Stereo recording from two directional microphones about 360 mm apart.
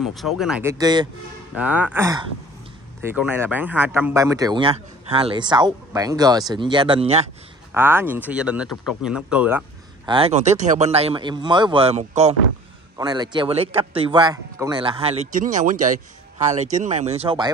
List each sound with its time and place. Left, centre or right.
0.0 s speech: centre
7.7 s speech: centre